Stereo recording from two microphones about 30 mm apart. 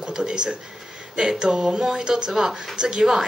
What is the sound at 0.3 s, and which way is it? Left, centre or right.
Speech, right.